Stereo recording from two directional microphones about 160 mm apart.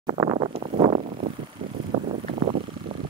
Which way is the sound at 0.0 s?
25° right (ahead or behind).